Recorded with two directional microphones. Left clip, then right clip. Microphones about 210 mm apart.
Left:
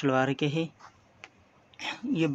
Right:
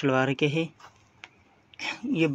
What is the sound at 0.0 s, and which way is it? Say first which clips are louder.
Speech: right 2 dB; 5° right (ahead or behind).